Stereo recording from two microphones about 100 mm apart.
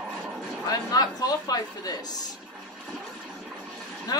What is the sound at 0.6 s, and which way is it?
Speech, 40° left (ahead or behind).